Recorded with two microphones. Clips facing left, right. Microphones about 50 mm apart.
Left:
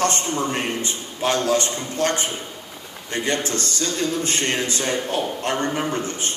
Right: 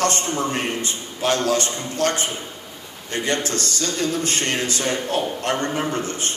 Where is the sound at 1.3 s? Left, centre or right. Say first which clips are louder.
Even; left.